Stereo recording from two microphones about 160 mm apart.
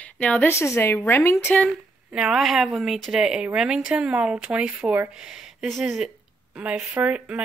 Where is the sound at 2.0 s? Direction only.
5° right (ahead or behind).